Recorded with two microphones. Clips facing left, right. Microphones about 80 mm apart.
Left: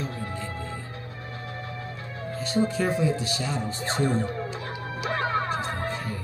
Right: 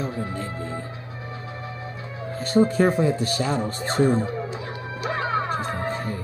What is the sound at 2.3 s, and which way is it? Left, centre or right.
Speech, right.